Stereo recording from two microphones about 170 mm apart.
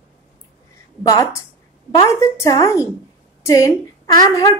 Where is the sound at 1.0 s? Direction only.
15° left (ahead or behind).